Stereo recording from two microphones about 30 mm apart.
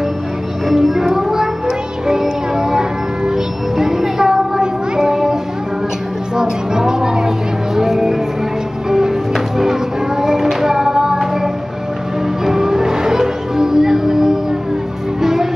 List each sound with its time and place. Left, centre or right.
0.7 s music: centre
4.6 s child singing: right
6.3 s music: right